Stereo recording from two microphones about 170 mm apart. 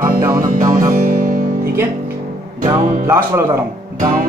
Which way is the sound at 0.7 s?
55° right (ahead or behind).